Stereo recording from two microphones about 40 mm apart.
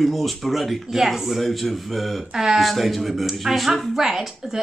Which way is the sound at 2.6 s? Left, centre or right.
Centre.